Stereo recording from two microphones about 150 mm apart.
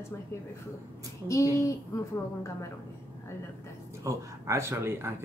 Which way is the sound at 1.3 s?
20° left (ahead or behind).